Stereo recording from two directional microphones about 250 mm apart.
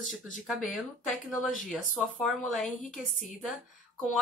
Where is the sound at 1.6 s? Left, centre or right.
Centre.